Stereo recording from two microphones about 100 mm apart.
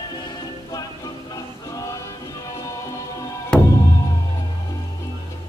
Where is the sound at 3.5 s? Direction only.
10° left (ahead or behind).